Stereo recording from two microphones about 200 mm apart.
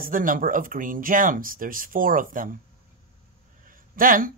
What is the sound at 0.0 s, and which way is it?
Speech, 45° right (ahead or behind).